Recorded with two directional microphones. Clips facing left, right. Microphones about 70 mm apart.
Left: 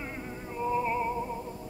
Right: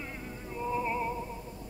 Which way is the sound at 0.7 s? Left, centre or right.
Centre.